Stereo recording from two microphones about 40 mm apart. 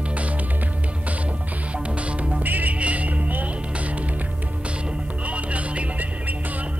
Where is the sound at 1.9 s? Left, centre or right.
Right.